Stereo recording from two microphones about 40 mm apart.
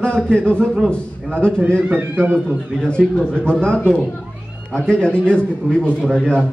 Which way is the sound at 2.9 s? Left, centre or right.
Left.